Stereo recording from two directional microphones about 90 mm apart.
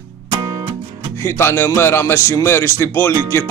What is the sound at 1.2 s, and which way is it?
Speech, 25° left (ahead or behind).